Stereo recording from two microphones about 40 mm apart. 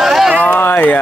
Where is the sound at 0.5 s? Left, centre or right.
Left.